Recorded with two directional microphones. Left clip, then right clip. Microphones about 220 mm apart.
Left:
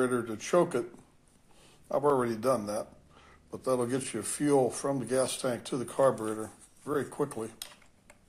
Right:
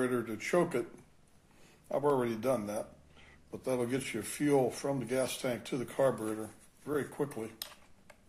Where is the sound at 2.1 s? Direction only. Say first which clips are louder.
Left 4 dB; 15° left (ahead or behind).